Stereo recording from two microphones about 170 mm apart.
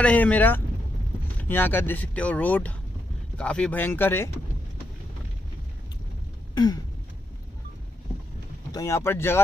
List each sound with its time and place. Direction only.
0.0 s speech: 10° left (ahead or behind)
6.5 s a sound: 25° left (ahead or behind)
8.7 s speech: 15° left (ahead or behind)